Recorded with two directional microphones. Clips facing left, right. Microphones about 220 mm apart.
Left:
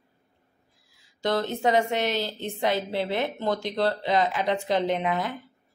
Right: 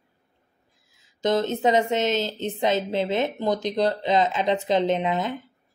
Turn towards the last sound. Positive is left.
turn(degrees=-20)  # may be behind; listen again after turning